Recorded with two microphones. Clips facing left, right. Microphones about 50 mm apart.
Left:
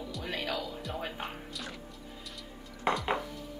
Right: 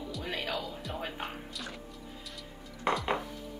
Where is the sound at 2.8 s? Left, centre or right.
Centre.